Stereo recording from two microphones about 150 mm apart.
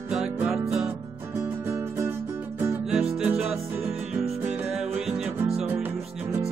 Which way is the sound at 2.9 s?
5° right (ahead or behind).